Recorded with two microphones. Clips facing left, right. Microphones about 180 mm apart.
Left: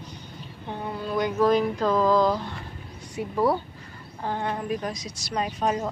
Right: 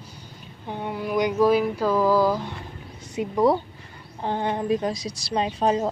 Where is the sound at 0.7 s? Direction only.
15° right (ahead or behind).